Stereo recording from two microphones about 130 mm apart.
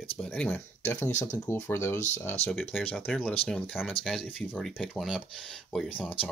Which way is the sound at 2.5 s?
5° left (ahead or behind).